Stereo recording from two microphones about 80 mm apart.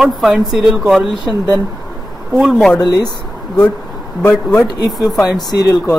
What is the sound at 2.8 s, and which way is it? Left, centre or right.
Speech, left.